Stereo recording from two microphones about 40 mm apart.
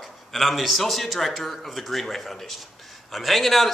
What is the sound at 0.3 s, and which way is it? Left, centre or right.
A man's voice, centre.